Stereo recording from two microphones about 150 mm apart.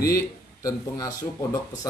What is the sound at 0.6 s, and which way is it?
Speech, 25° left (ahead or behind).